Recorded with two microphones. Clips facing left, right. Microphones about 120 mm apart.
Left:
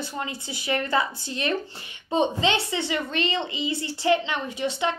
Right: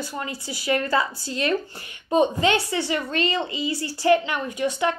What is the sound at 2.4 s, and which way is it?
Speech, 25° left (ahead or behind).